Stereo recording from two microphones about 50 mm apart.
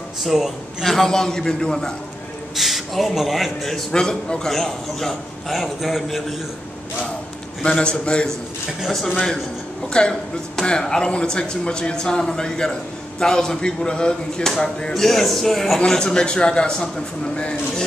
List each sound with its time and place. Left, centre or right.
0.2 s a man's voice: centre
0.8 s speech: centre
2.5 s a man's voice: centre
3.9 s a man's voice: centre
7.6 s a man's voice: centre
8.8 s a man's voice: centre
9.9 s speech: centre
15.0 s a man's voice: centre
15.8 s a man's voice: centre